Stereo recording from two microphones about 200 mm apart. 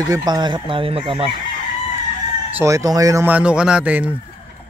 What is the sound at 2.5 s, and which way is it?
Speech, 15° right (ahead or behind).